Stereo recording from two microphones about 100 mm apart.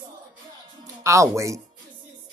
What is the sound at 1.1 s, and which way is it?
Speech, 30° right (ahead or behind).